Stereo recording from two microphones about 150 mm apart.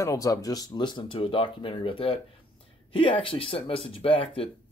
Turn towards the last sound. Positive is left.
turn(degrees=35)  # may be behind; listen again after turning